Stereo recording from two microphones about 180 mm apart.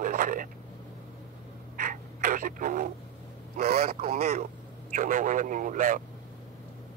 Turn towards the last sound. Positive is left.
turn(degrees=-45)  # may be behind; listen again after turning